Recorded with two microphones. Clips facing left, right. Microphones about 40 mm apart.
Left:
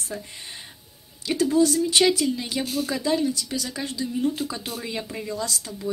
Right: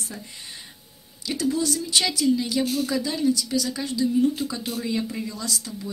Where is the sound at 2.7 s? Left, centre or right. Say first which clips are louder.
Right 2 dB; centre.